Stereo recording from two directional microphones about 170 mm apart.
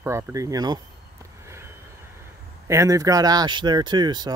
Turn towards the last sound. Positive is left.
turn(degrees=-25)  # may be behind; listen again after turning